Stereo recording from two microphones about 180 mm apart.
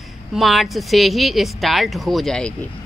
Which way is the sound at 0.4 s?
Centre (ahead or behind).